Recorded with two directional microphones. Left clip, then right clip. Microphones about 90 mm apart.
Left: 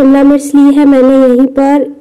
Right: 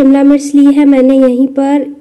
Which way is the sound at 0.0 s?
35° left (ahead or behind).